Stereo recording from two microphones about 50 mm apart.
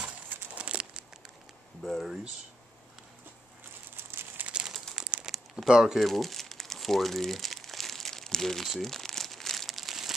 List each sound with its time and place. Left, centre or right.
0.6 s crumpling: right
1.8 s speech: centre
3.9 s a sound: right
4.5 s crumpling: centre
5.3 s crumpling: centre